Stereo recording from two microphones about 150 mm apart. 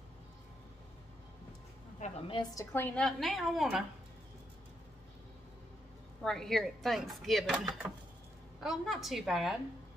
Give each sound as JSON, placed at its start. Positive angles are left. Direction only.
{"t": 2.0, "sound": "a woman's voice", "side_deg": 45}
{"t": 2.5, "sound": "speech", "side_deg": 15}
{"t": 6.2, "sound": "speech", "side_deg": 5}